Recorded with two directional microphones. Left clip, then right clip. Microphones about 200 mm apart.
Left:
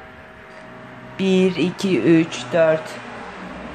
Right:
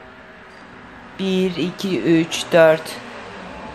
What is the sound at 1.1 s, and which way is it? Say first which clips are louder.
A woman's voice: left 3 dB; 10° left (ahead or behind).